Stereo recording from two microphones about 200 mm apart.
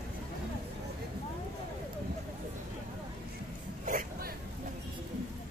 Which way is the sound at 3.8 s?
45° right (ahead or behind).